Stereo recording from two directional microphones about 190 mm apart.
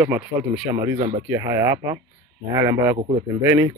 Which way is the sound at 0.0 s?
10° right (ahead or behind).